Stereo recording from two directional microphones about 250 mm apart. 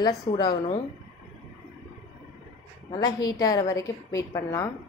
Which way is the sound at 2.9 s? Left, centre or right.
Centre.